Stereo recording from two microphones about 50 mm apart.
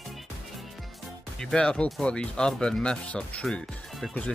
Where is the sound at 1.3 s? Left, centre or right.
Centre.